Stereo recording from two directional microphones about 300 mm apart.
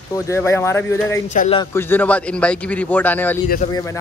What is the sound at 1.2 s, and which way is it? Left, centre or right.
Speech, left.